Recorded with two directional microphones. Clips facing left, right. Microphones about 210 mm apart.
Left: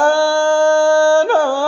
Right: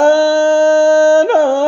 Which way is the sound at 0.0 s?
20° right (ahead or behind).